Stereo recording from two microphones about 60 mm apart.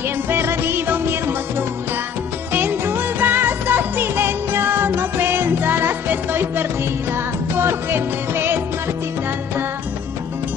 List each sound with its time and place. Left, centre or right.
0.3 s music: right
2.5 s music: right